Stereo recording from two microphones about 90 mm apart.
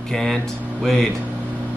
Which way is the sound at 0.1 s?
5° left (ahead or behind).